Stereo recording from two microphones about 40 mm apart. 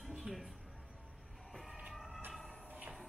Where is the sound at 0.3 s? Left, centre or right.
Right.